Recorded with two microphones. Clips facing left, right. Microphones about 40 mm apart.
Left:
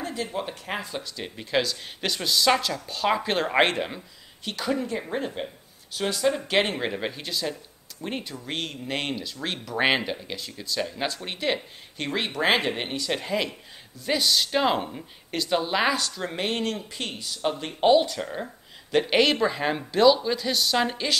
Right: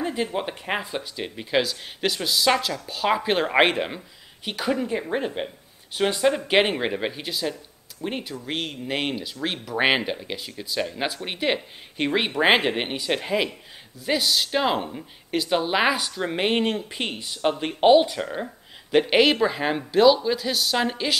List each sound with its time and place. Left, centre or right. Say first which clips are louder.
0.0 s speech: right 4 dB; right; by 21.2 s centre